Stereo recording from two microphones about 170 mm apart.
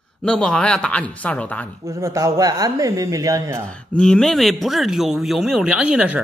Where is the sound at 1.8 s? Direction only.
20° right (ahead or behind).